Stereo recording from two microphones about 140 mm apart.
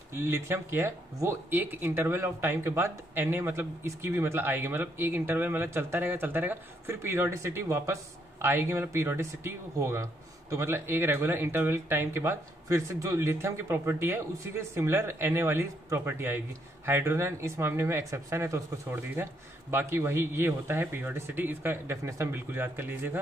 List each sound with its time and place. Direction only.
0.1 s speech: 20° right (ahead or behind)